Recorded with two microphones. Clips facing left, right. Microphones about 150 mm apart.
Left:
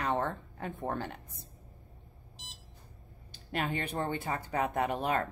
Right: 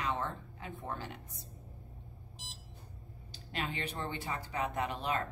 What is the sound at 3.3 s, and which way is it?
A woman's voice, 50° left (ahead or behind).